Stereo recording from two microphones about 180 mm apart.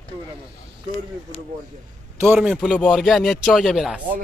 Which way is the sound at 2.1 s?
10° right (ahead or behind).